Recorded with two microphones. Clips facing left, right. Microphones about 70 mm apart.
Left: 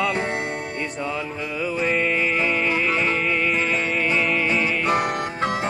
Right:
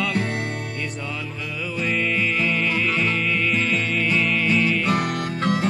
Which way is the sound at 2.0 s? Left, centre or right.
Left.